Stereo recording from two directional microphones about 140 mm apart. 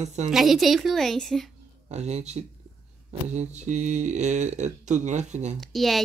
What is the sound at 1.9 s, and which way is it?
Speech, 50° right (ahead or behind).